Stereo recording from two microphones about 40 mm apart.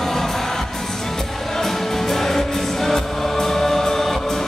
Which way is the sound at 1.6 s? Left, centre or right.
Centre.